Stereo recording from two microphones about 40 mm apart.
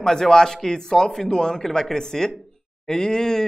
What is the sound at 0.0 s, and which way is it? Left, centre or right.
Speech, centre.